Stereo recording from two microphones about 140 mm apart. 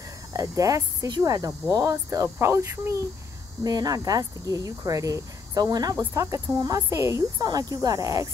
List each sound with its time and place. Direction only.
0.3 s speech: 25° right (ahead or behind)